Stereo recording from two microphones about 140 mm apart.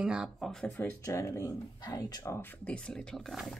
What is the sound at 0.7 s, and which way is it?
Speech, 15° left (ahead or behind).